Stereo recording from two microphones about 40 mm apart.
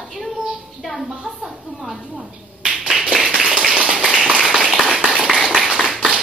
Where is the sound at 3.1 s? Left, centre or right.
Centre.